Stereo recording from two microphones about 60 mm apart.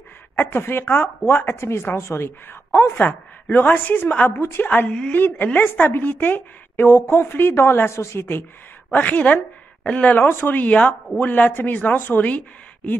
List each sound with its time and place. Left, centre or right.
0.5 s a woman's voice: left
3.0 s a woman's voice: left
4.6 s speech: left
5.1 s a woman's voice: left
5.6 s a woman's voice: left
8.9 s speech: left
10.1 s a woman's voice: left